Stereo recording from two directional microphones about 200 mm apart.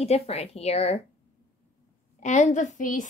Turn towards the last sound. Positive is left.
turn(degrees=40)  # may be behind; listen again after turning